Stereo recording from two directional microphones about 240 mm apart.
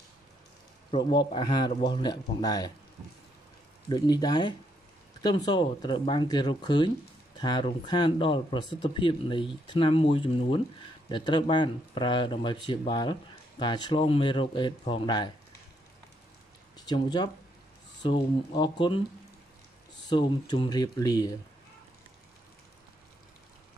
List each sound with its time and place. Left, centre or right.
0.9 s speech: centre
3.9 s speech: centre
16.7 s speech: centre
20.1 s speech: centre